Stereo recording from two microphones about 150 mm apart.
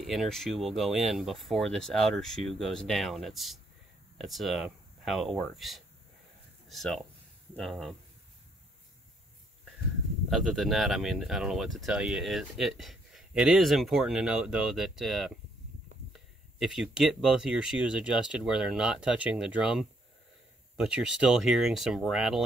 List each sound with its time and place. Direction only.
0.0 s speech: centre (ahead or behind)
10.3 s speech: centre (ahead or behind)